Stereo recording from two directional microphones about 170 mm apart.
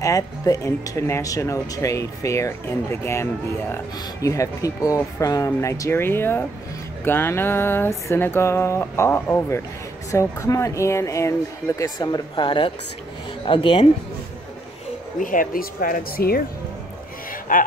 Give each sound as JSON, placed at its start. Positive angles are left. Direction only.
{"t": 0.0, "sound": "speech", "side_deg": 20}
{"t": 15.1, "sound": "speech", "side_deg": 55}
{"t": 17.3, "sound": "a sound", "side_deg": 55}